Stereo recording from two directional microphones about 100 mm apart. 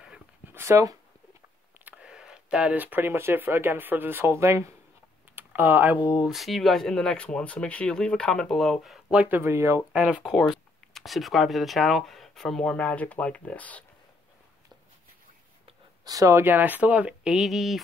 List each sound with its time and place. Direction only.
0.5 s a sound: 25° right (ahead or behind)
1.9 s speech: 10° right (ahead or behind); by 4.7 s 30° right (ahead or behind)
5.3 s computer keyboard: 20° right (ahead or behind)
6.2 s speech: centre (ahead or behind)
9.1 s speech: 15° right (ahead or behind)
9.9 s speech: 10° right (ahead or behind)
10.2 s speech: centre (ahead or behind)
16.0 s speech: 35° right (ahead or behind); by 17.8 s centre (ahead or behind)